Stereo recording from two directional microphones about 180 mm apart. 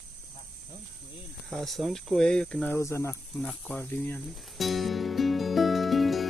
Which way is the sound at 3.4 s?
5° left (ahead or behind).